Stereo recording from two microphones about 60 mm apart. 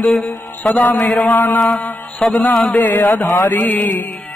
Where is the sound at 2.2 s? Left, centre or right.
Centre.